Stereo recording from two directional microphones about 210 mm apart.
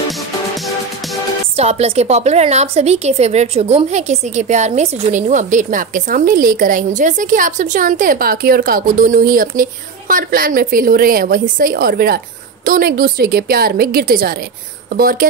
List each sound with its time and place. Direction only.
1.6 s a woman's voice: 30° right (ahead or behind)